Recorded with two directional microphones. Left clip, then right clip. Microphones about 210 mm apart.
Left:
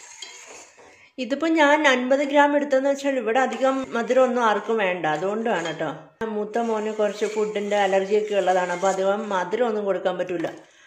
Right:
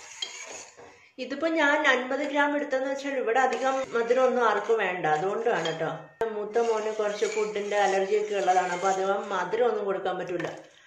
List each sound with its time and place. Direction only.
1.1 s speech: 50° left (ahead or behind)